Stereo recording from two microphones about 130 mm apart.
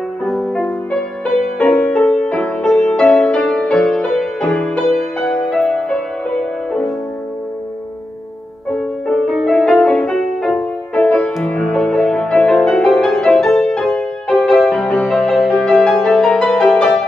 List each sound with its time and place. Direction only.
0.2 s music: centre (ahead or behind)
8.7 s music: 5° left (ahead or behind)